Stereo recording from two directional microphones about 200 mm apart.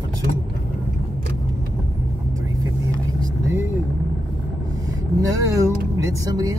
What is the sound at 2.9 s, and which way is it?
Vehicle, 15° right (ahead or behind).